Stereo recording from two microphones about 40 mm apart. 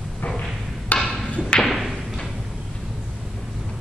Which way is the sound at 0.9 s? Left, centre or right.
Left.